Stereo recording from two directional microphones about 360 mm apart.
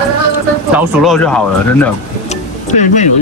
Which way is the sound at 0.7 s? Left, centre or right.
Centre.